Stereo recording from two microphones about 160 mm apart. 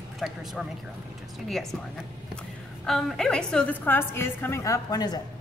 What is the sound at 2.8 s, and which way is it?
A woman's voice, centre (ahead or behind).